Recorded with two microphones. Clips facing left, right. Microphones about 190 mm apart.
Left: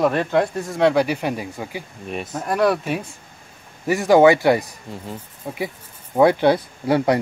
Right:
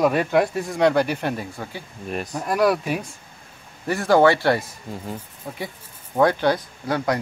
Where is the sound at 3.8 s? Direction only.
15° left (ahead or behind).